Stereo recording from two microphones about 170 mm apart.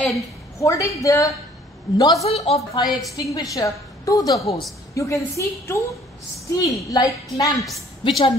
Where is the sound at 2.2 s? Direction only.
35° left (ahead or behind).